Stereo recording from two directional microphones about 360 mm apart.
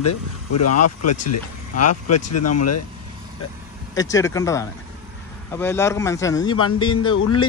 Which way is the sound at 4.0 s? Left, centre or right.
Centre.